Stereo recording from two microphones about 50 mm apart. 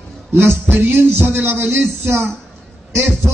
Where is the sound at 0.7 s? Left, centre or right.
Right.